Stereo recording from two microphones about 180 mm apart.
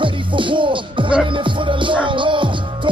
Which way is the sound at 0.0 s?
30° right (ahead or behind).